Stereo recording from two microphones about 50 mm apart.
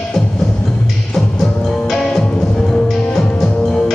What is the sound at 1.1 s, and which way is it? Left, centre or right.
Music, centre.